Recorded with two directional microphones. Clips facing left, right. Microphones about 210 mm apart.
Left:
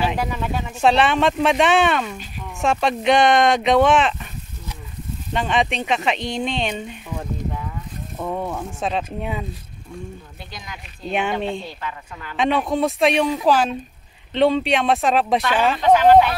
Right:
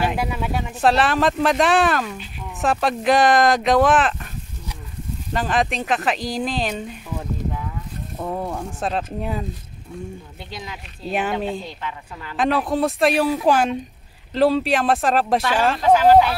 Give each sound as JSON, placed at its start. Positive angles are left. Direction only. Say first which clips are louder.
{"t": 0.1, "sound": "speech", "louder": "even", "side_deg": -10}
{"t": 5.3, "sound": "speech", "louder": "even", "side_deg": 0}
{"t": 11.1, "sound": "speech", "louder": "even", "side_deg": -5}
{"t": 11.8, "sound": "a woman's voice", "louder": "even", "side_deg": -30}
{"t": 12.4, "sound": "speech", "louder": "even", "side_deg": 0}